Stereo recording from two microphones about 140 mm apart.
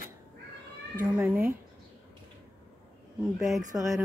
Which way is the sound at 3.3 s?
Centre (ahead or behind).